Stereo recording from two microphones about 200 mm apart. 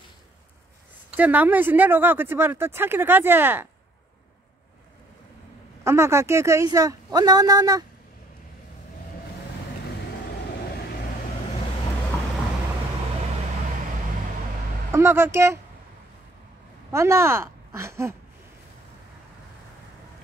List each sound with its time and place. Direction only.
1.1 s speech: 10° right (ahead or behind)
5.9 s speech: 15° right (ahead or behind)
14.9 s speech: 15° right (ahead or behind)
16.9 s speech: 15° right (ahead or behind)